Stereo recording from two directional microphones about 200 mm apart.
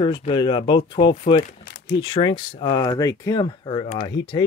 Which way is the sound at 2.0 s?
25° left (ahead or behind).